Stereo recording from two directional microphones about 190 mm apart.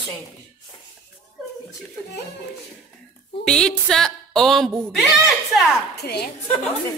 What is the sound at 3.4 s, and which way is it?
Speech, 5° left (ahead or behind).